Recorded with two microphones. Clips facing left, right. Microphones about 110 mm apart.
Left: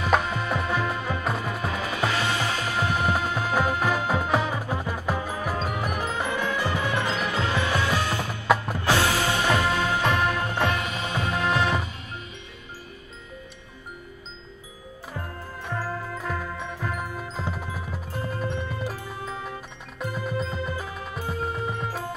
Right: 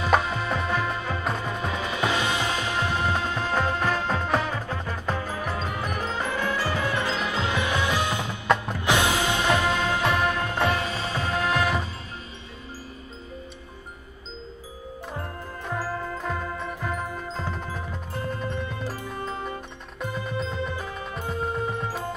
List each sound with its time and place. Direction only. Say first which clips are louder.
0.0 s music: right 1 dB; centre (ahead or behind)
1.9 s music: right 1 dB; 20° right (ahead or behind)
2.8 s music: left 3 dB; 15° left (ahead or behind)
7.2 s music: left 1 dB; 20° right (ahead or behind)
10.0 s music: even; centre (ahead or behind)
10.7 s music: right 1 dB; 30° right (ahead or behind)
11.4 s music: left 1 dB; centre (ahead or behind)
16.1 s music: right 1 dB; centre (ahead or behind)